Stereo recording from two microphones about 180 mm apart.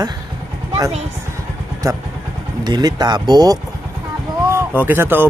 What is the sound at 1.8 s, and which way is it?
Speech, 15° right (ahead or behind).